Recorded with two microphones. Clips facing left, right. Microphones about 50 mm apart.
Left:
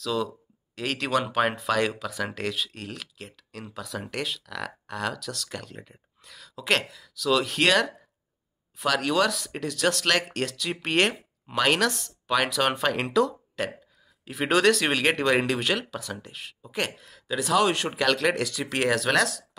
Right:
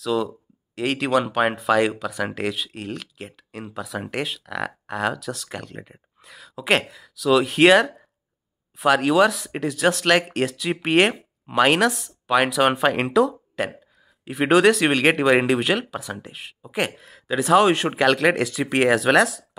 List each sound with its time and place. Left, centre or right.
0.0 s speech: centre
9.5 s speech: right
9.8 s speech: centre
11.9 s speech: centre